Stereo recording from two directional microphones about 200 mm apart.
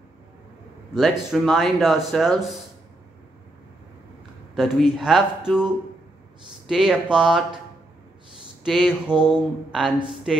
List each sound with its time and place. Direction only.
0.9 s speech: centre (ahead or behind)
4.6 s speech: centre (ahead or behind)
6.7 s speech: centre (ahead or behind)
8.6 s speech: centre (ahead or behind)